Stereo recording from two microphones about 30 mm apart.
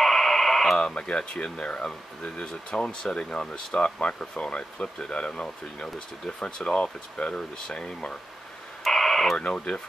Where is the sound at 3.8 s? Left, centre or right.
Left.